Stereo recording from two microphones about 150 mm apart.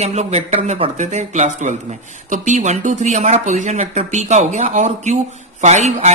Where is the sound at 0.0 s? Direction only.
45° right (ahead or behind).